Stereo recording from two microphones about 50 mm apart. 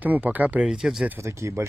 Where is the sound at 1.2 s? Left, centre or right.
Right.